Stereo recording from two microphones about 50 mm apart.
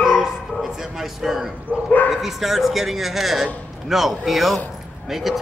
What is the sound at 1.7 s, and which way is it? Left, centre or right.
Bow-wow, left.